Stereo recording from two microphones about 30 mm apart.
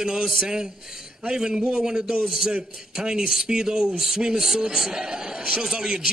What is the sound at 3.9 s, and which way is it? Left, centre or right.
A man's voice, centre.